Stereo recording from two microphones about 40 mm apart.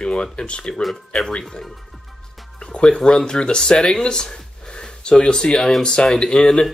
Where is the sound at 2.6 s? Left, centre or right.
Left.